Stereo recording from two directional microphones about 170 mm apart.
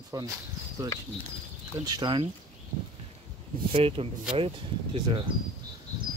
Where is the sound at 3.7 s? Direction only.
35° right (ahead or behind).